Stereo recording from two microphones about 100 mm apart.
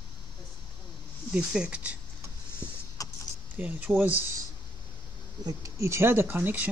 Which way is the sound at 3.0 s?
35° left (ahead or behind).